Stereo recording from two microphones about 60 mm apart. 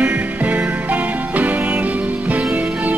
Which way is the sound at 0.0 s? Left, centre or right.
Right.